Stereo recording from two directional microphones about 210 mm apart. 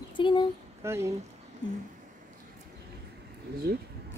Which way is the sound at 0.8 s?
15° right (ahead or behind).